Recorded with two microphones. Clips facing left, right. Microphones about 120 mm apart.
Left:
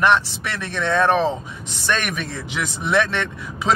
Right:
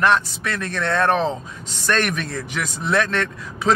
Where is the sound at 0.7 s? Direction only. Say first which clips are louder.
Left 2 dB; 15° left (ahead or behind).